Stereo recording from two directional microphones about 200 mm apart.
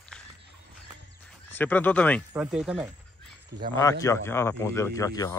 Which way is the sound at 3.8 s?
15° left (ahead or behind).